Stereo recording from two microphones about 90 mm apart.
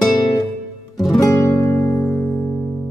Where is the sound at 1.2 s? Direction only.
30° left (ahead or behind).